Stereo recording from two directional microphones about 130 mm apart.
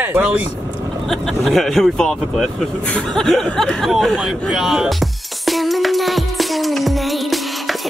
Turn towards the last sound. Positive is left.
turn(degrees=0)  # may be behind; listen again after turning